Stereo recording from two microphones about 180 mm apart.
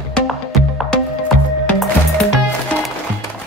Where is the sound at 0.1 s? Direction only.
Centre (ahead or behind).